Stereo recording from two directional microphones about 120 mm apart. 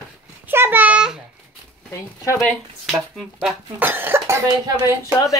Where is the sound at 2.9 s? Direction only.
5° left (ahead or behind).